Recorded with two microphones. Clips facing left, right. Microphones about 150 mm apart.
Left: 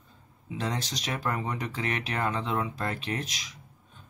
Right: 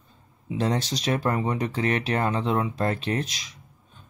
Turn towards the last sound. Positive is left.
turn(degrees=-25)  # may be behind; listen again after turning